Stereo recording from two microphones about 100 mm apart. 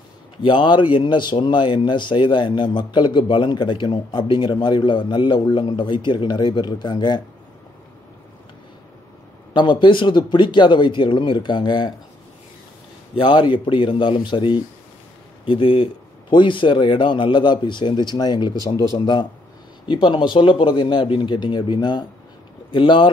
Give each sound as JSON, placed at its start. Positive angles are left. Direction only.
{"t": 0.4, "sound": "a man's voice", "side_deg": 50}
{"t": 9.5, "sound": "a man's voice", "side_deg": 50}
{"t": 13.1, "sound": "a man's voice", "side_deg": 55}